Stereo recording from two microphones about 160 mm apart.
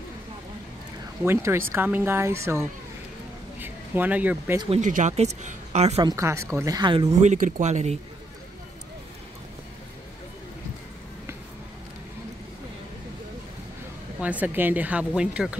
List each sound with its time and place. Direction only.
1.2 s speech: 15° right (ahead or behind)
4.7 s speech: 50° right (ahead or behind)
6.0 s speech: 20° right (ahead or behind)
7.1 s speech: 45° right (ahead or behind)
14.2 s speech: 10° right (ahead or behind)